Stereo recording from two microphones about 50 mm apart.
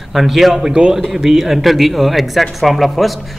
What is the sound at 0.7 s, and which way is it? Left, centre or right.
A man's voice, centre.